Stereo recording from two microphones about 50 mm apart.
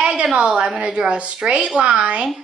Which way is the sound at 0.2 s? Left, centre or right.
Right.